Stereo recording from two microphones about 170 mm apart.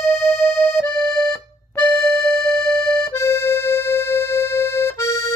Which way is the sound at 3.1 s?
15° left (ahead or behind).